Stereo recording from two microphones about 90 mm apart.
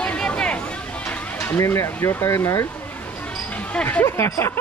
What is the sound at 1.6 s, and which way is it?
Speech, 30° left (ahead or behind).